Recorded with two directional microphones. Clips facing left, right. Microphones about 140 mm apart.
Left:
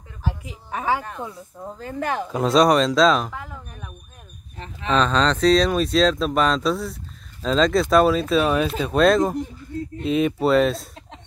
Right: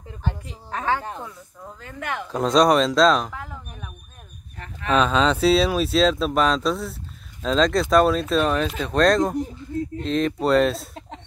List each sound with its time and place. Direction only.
0.2 s a woman's voice: 5° left (ahead or behind)
1.2 s speech: 25° left (ahead or behind)
2.3 s speech: 5° left (ahead or behind)